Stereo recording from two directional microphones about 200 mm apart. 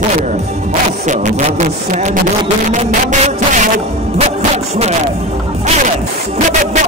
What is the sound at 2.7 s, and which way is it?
Music, 35° right (ahead or behind).